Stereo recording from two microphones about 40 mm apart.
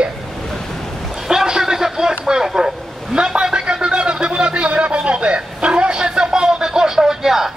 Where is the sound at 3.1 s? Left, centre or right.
Right.